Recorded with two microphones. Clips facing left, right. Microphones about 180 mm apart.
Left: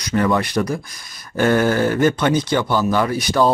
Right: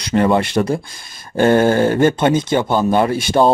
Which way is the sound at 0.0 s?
30° right (ahead or behind).